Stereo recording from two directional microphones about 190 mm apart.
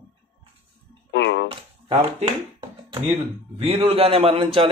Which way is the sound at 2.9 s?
30° right (ahead or behind).